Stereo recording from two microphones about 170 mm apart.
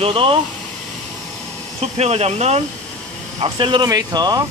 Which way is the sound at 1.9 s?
40° right (ahead or behind).